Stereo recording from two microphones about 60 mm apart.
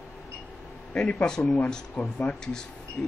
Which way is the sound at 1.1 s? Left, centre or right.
Centre.